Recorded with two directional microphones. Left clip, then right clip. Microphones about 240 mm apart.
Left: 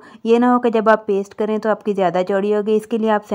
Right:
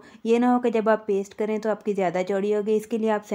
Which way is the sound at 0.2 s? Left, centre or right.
Left.